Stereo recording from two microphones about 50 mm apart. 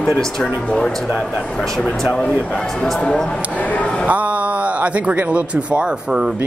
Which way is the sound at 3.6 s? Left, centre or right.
Left.